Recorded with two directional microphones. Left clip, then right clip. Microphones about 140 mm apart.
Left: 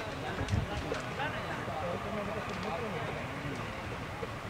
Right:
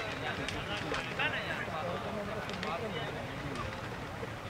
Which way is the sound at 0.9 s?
30° right (ahead or behind).